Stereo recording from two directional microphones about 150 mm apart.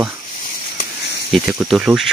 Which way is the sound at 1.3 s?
Centre (ahead or behind).